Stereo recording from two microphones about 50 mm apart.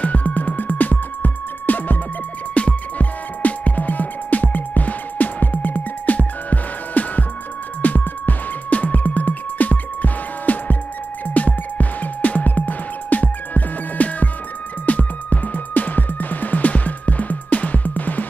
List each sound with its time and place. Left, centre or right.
0.0 s music: left